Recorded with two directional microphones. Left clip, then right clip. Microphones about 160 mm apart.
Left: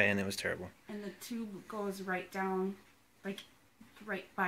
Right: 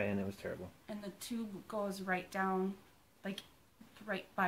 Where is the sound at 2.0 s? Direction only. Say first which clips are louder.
Even; 25° right (ahead or behind).